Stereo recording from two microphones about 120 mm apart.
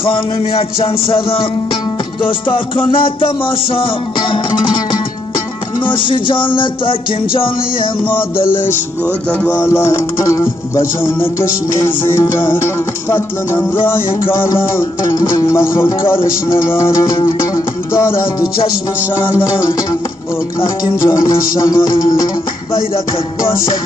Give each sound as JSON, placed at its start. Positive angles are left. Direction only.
{"t": 0.0, "sound": "music", "side_deg": 50}
{"t": 5.9, "sound": "music", "side_deg": 45}
{"t": 9.6, "sound": "music", "side_deg": 20}
{"t": 15.1, "sound": "music", "side_deg": 30}
{"t": 19.4, "sound": "music", "side_deg": 25}